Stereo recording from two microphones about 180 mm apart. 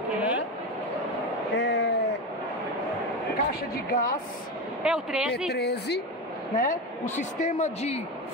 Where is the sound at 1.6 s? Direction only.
75° left (ahead or behind).